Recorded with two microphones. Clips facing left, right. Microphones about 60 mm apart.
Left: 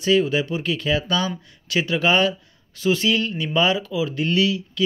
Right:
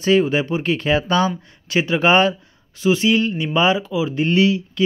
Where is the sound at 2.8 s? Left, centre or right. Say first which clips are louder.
Right 4 dB; centre.